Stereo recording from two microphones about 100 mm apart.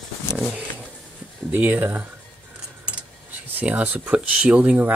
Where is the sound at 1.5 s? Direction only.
20° right (ahead or behind).